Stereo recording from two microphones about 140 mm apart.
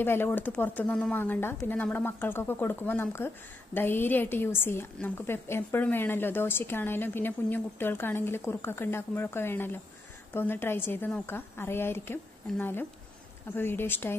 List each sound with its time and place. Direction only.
0.0 s a woman's voice: 15° left (ahead or behind)